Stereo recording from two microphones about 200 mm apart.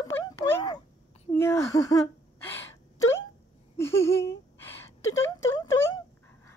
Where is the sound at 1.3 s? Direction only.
15° left (ahead or behind).